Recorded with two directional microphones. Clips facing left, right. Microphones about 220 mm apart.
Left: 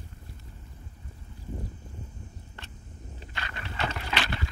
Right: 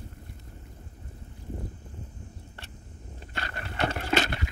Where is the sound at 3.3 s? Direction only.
45° right (ahead or behind).